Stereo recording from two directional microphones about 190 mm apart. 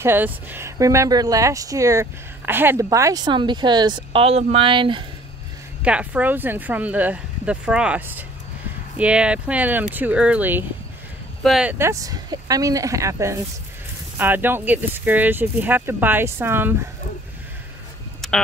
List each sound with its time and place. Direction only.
0.0 s speech: 10° right (ahead or behind); by 5.0 s 25° right (ahead or behind)
5.8 s speech: 5° right (ahead or behind)
11.8 s speech: 15° right (ahead or behind)
18.2 s a sound: centre (ahead or behind)